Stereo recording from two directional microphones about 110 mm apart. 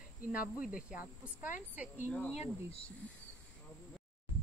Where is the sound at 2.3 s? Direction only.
70° left (ahead or behind).